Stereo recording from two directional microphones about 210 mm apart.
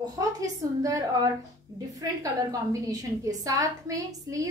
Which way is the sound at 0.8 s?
15° right (ahead or behind).